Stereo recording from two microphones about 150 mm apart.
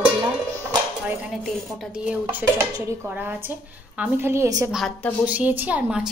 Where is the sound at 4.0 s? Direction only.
15° right (ahead or behind).